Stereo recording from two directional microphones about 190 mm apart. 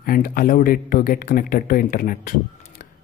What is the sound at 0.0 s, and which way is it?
Speech, 50° left (ahead or behind).